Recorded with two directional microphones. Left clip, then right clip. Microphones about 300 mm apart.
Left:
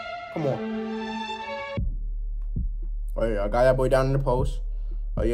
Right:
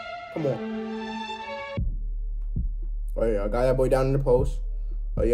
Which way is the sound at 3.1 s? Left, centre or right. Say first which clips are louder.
Even; centre.